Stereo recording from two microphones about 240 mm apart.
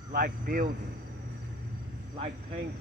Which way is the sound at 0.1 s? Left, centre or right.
Right.